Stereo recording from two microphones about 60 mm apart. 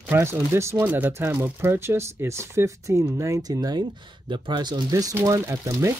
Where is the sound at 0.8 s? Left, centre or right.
Right.